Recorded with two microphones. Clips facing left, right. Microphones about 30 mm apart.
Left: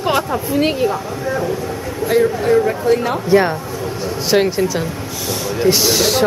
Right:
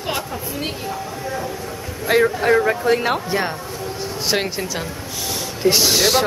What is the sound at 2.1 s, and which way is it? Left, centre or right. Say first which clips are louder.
Speech: left 1 dB; right.